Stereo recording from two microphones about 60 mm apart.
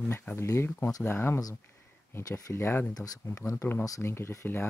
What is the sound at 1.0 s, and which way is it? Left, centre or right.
Speech, left.